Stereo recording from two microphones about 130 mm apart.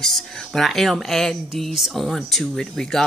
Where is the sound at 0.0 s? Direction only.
Centre (ahead or behind).